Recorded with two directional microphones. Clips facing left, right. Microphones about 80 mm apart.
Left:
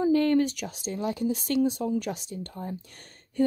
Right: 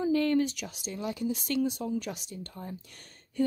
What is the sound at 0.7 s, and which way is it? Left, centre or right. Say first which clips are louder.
Speech: left 5 dB; left.